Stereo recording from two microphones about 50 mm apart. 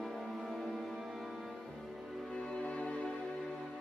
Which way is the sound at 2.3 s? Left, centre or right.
Centre.